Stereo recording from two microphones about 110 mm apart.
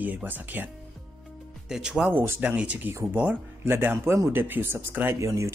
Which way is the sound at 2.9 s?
25° right (ahead or behind).